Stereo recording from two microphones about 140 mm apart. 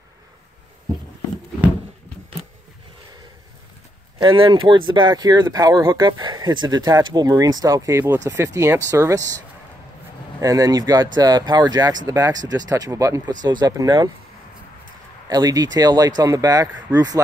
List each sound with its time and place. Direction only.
4.2 s speech: 35° right (ahead or behind)
10.4 s speech: 25° right (ahead or behind)
15.2 s speech: 25° right (ahead or behind)